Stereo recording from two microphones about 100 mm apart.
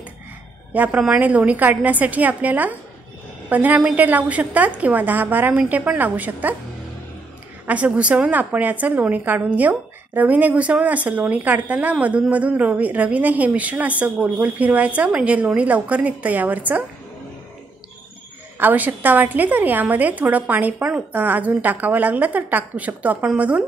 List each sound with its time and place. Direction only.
0.7 s a woman's voice: 15° right (ahead or behind)
7.6 s a woman's voice: 15° right (ahead or behind)
18.6 s a woman's voice: 20° right (ahead or behind)